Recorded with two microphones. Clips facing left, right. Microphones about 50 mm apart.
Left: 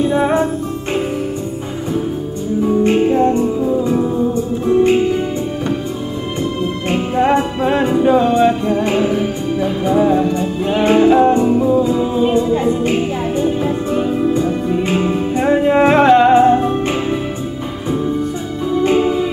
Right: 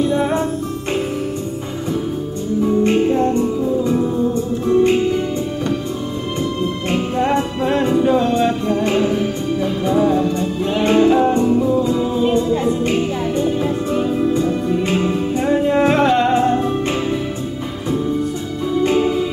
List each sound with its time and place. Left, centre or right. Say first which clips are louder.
0.0 s music: left 3 dB; centre
2.8 s music: left 3 dB; centre
6.9 s music: left 4 dB; centre
11.4 s music: left 2 dB; left
11.7 s music: left 3 dB; centre
18.9 s music: left 3 dB; left